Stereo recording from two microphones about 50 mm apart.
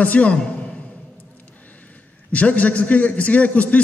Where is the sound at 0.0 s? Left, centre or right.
Left.